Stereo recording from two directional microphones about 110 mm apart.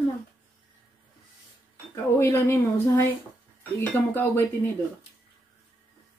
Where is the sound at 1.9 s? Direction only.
20° left (ahead or behind).